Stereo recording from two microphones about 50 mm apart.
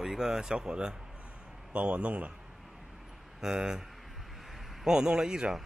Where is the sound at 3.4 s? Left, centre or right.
Centre.